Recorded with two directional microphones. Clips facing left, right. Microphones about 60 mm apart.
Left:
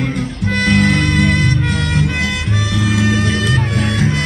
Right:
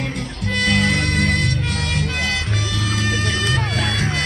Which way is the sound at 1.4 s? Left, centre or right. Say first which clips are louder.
Left 6 dB; left.